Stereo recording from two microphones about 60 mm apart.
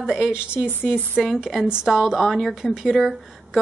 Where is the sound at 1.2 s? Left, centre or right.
Centre.